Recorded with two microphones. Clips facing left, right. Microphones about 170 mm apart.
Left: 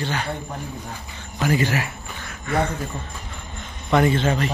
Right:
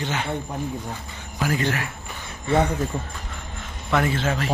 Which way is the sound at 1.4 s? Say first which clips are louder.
Left 3 dB; 5° left (ahead or behind).